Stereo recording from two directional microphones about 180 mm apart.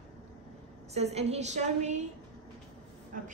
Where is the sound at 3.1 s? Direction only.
50° right (ahead or behind).